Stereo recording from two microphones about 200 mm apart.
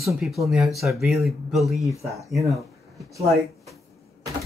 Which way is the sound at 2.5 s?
Centre (ahead or behind).